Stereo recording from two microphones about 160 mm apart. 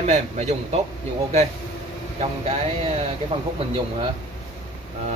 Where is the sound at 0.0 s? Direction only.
45° right (ahead or behind).